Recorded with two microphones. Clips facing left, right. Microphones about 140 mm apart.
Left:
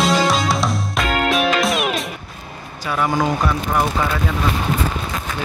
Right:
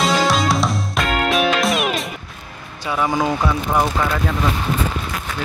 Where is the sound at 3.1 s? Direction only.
5° right (ahead or behind).